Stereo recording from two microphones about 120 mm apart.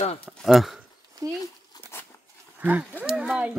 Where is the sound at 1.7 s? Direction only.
35° left (ahead or behind).